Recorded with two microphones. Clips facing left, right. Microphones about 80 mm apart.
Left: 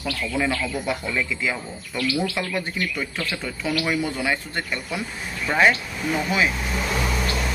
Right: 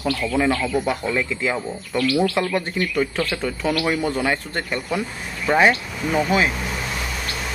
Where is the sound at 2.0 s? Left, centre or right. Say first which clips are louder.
Right 5 dB; right.